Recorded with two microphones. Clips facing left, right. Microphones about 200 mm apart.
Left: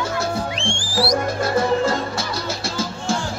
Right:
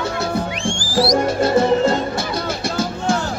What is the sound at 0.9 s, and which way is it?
Music, 25° right (ahead or behind).